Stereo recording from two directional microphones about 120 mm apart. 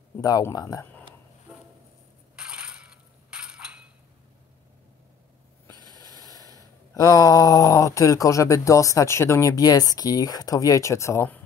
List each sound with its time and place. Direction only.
0.2 s speech: 30° left (ahead or behind)
2.3 s crushing: 5° right (ahead or behind)
3.3 s chink: 10° right (ahead or behind)
5.9 s a sound: 30° left (ahead or behind)